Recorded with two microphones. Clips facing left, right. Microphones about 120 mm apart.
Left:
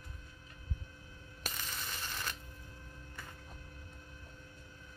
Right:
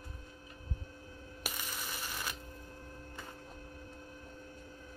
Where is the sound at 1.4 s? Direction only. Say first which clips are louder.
Right 1 dB; 10° right (ahead or behind).